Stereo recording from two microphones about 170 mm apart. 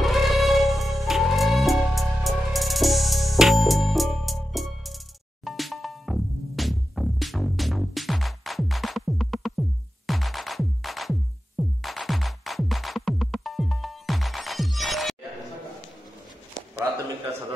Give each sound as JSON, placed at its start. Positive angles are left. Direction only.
{"t": 0.0, "sound": "music", "side_deg": 0}